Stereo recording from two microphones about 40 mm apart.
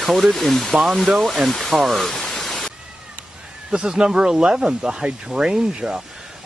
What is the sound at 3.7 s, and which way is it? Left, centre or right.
Speech, right.